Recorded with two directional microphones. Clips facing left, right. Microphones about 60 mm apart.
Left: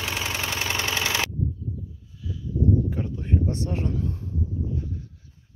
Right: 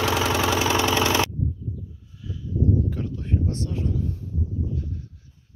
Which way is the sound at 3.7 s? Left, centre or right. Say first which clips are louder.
Even; left.